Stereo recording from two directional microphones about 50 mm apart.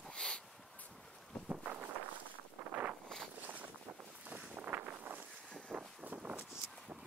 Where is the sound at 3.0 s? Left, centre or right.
Centre.